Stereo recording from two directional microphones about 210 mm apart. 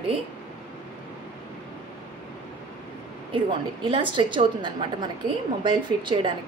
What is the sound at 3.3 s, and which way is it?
A woman's voice, 25° right (ahead or behind).